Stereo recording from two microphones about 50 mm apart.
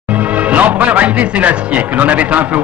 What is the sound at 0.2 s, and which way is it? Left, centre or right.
A man's voice, right.